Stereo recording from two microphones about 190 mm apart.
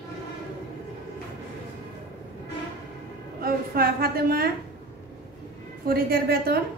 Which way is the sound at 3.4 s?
50° right (ahead or behind).